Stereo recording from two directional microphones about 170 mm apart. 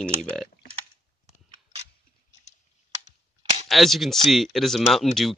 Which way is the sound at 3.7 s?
Centre (ahead or behind).